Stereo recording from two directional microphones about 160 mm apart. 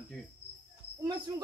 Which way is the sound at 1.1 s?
30° right (ahead or behind).